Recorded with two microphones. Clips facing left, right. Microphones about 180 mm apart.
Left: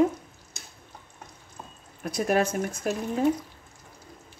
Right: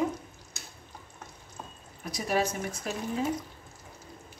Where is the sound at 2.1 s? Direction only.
55° left (ahead or behind).